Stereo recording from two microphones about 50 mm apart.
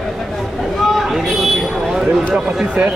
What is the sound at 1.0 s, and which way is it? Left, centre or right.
Vehicle, centre.